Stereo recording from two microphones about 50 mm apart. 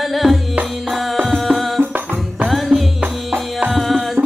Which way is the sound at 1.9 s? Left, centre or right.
Right.